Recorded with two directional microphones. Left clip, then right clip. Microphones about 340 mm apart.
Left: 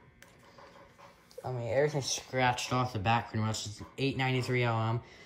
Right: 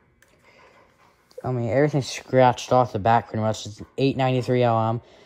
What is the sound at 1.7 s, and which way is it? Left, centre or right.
Speech, right.